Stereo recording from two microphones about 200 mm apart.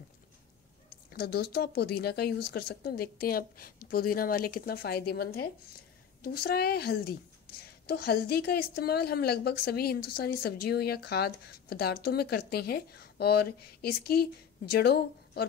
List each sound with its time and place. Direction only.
1.1 s a woman's voice: 55° left (ahead or behind)